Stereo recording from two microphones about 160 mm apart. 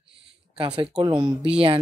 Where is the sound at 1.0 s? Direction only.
25° right (ahead or behind).